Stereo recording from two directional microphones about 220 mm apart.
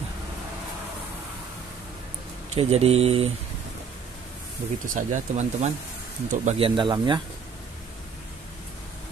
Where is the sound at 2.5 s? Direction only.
25° right (ahead or behind).